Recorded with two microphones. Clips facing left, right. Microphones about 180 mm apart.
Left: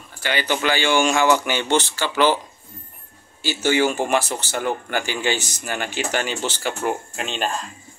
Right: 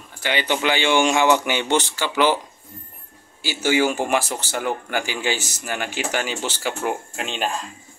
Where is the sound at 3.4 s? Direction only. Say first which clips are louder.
Even; 10° right (ahead or behind).